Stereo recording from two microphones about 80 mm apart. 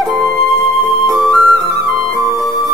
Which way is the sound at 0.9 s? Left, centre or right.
Centre.